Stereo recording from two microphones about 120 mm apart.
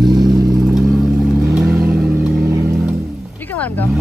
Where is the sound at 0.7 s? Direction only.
5° right (ahead or behind).